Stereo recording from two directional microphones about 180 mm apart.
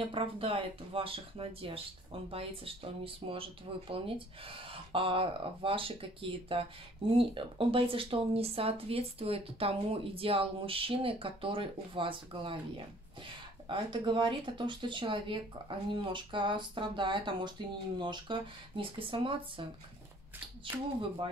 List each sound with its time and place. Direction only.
0.1 s speech: 30° right (ahead or behind)
20.6 s speech: 30° right (ahead or behind)